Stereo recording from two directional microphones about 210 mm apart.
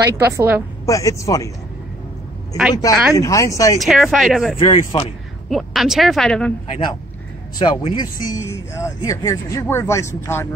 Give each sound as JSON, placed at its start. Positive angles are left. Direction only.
{"t": 0.1, "sound": "a woman's voice", "side_deg": -10}
{"t": 0.8, "sound": "speech", "side_deg": 15}
{"t": 2.7, "sound": "speech", "side_deg": 15}
{"t": 3.8, "sound": "speech", "side_deg": 0}
{"t": 4.6, "sound": "speech", "side_deg": 25}
{"t": 5.5, "sound": "speech", "side_deg": 0}
{"t": 7.5, "sound": "speech", "side_deg": 20}